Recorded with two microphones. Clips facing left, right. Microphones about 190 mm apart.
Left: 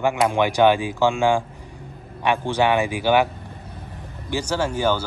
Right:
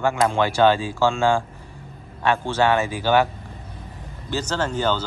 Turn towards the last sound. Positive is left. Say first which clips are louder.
# left 1 dB
turn(degrees=10)  # may be behind; listen again after turning